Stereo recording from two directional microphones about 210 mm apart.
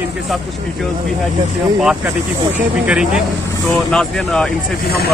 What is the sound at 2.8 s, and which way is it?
A man's voice, 5° right (ahead or behind).